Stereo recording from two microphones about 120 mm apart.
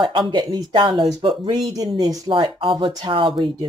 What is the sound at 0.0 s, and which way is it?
Speech, 40° right (ahead or behind).